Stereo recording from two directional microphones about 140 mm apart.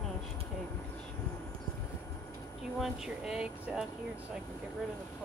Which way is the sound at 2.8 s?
5° right (ahead or behind).